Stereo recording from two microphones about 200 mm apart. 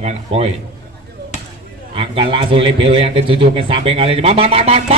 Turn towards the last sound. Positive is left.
turn(degrees=-30)  # may be behind; listen again after turning